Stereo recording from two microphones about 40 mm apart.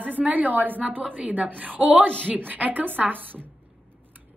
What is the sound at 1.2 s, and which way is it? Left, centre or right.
A woman's voice, right.